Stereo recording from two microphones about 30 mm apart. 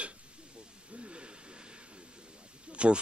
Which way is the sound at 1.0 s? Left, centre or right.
Right.